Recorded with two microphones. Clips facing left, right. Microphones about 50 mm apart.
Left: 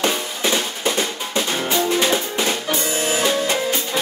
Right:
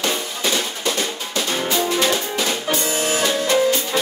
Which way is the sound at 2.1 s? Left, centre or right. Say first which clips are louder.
Left 1 dB; centre.